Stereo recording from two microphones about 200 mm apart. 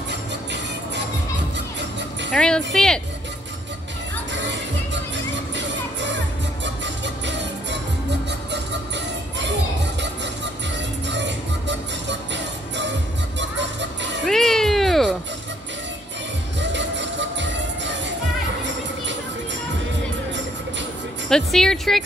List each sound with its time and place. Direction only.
0.1 s music: 60° right (ahead or behind)
2.3 s speech: 5° left (ahead or behind)
4.3 s music: 65° right (ahead or behind)
6.6 s a sound: 65° right (ahead or behind)
8.3 s music: 60° right (ahead or behind)
14.2 s cat: centre (ahead or behind)
16.5 s music: 65° right (ahead or behind)
21.3 s speech: centre (ahead or behind)